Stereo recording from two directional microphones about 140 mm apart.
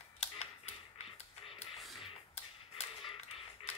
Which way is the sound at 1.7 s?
Centre (ahead or behind).